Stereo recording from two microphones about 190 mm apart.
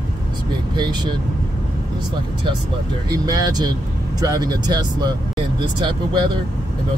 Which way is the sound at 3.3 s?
20° right (ahead or behind).